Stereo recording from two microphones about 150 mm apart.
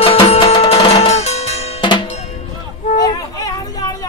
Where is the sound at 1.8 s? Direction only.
30° left (ahead or behind).